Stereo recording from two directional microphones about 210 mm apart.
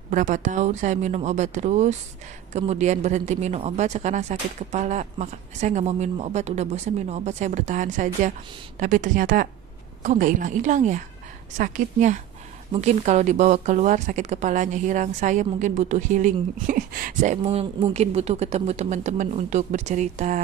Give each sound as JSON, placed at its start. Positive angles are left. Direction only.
{"t": 0.1, "sound": "speech", "side_deg": -35}